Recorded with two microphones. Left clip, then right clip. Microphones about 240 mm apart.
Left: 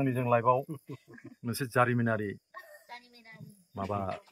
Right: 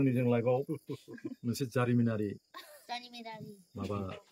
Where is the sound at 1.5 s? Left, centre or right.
Centre.